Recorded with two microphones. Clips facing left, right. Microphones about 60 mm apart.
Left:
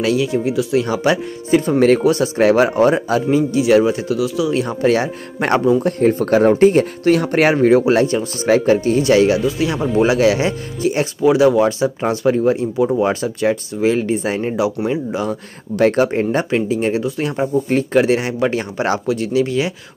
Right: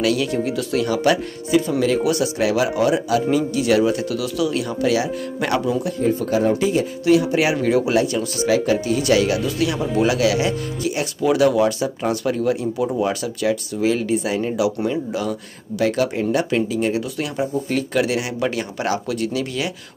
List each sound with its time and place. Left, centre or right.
0.0 s speech: left
1.5 s speech: left
3.3 s speech: left
5.8 s speech: left
7.5 s speech: left
15.7 s speech: left